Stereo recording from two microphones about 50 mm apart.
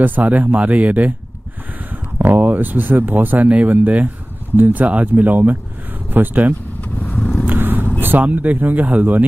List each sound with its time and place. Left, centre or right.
0.0 s speech: right
2.1 s speech: right
6.8 s vehicle: left
7.2 s vehicle: left
7.4 s vehicle: right
8.0 s a sound: right
8.3 s speech: right